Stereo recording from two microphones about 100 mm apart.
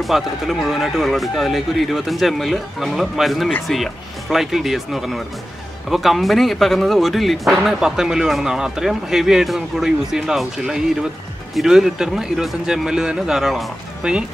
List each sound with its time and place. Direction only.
0.0 s speech: centre (ahead or behind)